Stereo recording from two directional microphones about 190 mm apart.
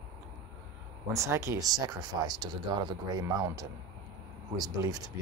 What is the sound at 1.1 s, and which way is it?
Speech, 15° right (ahead or behind).